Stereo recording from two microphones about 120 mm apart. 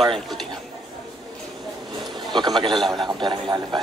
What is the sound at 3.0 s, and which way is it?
Speech, 40° right (ahead or behind).